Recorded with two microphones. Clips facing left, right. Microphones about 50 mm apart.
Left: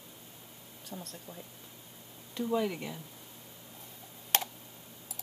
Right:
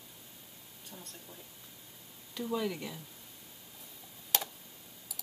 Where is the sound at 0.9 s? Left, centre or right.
Left.